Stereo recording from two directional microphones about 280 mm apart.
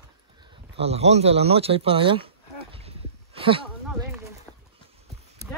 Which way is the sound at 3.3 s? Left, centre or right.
Centre.